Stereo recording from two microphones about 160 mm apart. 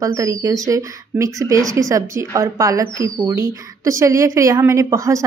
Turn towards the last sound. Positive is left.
turn(degrees=-20)  # may be behind; listen again after turning